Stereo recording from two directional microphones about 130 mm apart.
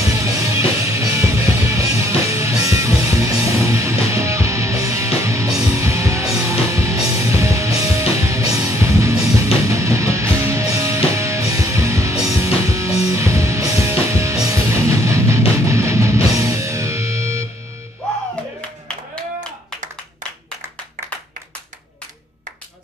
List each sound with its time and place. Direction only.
0.1 s music: 25° right (ahead or behind)